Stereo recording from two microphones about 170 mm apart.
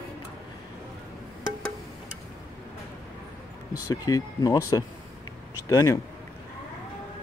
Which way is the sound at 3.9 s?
20° left (ahead or behind).